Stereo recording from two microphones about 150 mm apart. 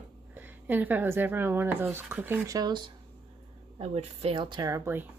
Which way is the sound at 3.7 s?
40° right (ahead or behind).